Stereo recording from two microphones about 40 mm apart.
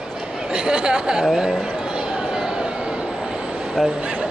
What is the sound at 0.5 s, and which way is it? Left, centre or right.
Speech, right.